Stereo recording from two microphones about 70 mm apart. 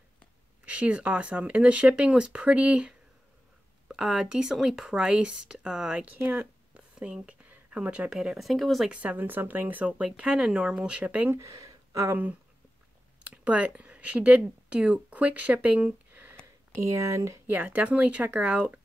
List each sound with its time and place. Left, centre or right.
0.7 s speech: centre
3.9 s speech: centre
6.1 s speech: right
6.7 s a sound: centre
8.1 s speech: centre
8.9 s speech: right
11.0 s speech: right
11.3 s a sound: right
12.0 s speech: right
16.9 s speech: right
17.5 s speech: right